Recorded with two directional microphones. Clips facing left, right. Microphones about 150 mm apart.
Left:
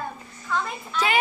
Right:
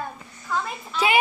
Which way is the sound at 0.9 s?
10° right (ahead or behind).